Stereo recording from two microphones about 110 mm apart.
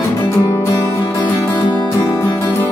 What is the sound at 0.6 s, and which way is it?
Music, 25° left (ahead or behind).